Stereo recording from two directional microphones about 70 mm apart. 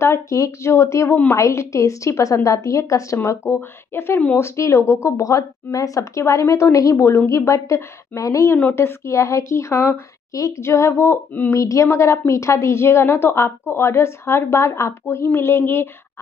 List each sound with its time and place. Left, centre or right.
0.0 s speech: left
3.2 s a woman's voice: left
11.5 s a woman's voice: left